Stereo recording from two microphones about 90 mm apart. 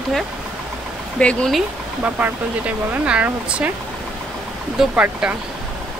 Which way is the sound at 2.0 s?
15° right (ahead or behind).